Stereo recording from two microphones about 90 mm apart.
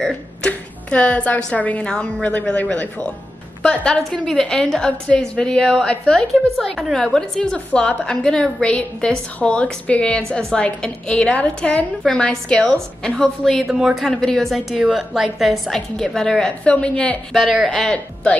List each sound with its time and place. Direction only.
0.0 s a woman's voice: 10° left (ahead or behind)